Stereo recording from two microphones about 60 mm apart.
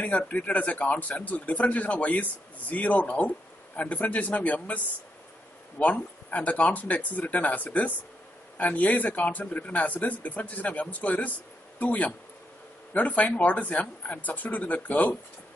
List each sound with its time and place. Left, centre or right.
0.0 s speech: left